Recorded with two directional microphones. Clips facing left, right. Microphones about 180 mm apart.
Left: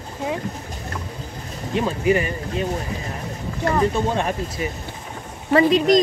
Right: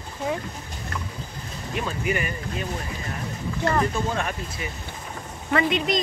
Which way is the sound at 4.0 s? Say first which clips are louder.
Left 5 dB; 30° left (ahead or behind).